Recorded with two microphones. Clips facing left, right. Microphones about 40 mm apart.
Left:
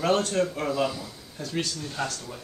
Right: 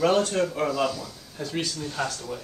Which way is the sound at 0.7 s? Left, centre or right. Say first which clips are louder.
Right 1 dB; centre.